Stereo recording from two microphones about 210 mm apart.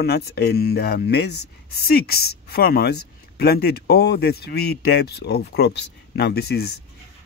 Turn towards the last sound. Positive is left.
turn(degrees=50)  # may be behind; listen again after turning